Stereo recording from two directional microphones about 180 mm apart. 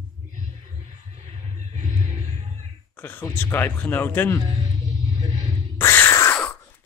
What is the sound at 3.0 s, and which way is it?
Speech, 10° left (ahead or behind).